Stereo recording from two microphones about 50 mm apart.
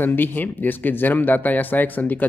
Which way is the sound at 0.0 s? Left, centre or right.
Left.